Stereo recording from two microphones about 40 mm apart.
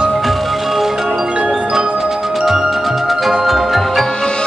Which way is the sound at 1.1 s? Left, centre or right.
Right.